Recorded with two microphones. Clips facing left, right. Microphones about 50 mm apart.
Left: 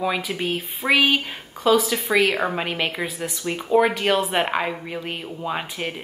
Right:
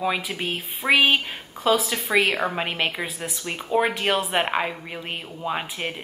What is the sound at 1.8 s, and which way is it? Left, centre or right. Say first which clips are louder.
A woman's voice: left 2 dB; centre.